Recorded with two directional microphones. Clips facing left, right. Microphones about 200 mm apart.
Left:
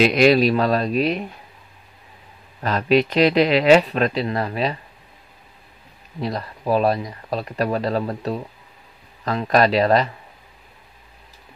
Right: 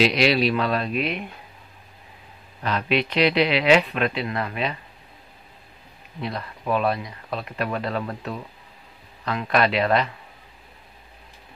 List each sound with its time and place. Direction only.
0.0 s speech: 50° left (ahead or behind)
2.6 s speech: 45° left (ahead or behind)
6.2 s speech: 35° left (ahead or behind)